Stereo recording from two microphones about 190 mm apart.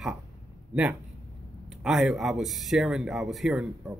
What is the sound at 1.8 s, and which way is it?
Speech, centre (ahead or behind).